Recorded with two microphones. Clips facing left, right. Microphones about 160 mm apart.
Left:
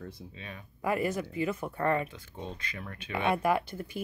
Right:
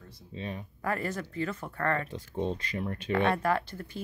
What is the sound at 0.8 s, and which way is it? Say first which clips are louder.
Speech: left 3 dB; 10° left (ahead or behind).